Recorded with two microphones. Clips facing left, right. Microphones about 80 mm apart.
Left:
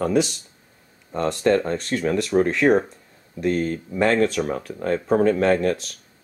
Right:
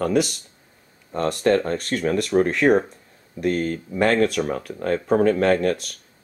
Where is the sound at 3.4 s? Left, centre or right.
Right.